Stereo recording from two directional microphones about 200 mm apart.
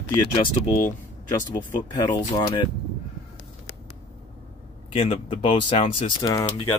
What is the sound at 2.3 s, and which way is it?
Speech, 25° left (ahead or behind).